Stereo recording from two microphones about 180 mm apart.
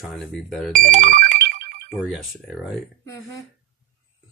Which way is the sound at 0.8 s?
45° right (ahead or behind).